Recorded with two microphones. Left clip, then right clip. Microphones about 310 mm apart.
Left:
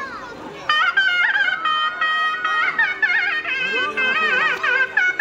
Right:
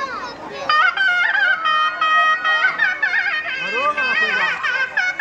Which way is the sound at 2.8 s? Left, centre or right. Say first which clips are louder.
Even; centre.